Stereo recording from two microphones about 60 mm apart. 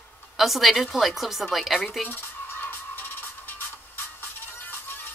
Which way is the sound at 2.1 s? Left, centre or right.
Left.